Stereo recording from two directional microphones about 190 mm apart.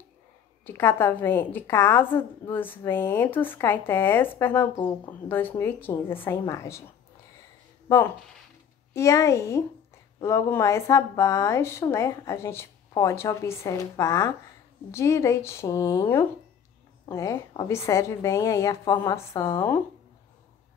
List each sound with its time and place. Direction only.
0.7 s a woman's voice: 10° left (ahead or behind)
8.9 s a woman's voice: 15° left (ahead or behind)